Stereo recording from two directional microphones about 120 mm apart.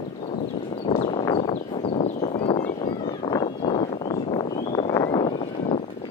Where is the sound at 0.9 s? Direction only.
45° left (ahead or behind).